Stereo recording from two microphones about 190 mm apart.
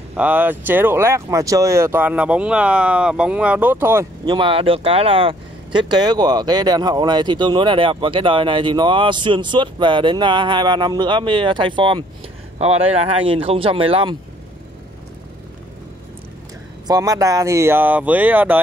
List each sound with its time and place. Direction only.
0.1 s speech: 10° right (ahead or behind); by 14.1 s 30° right (ahead or behind)
16.8 s speech: 20° right (ahead or behind)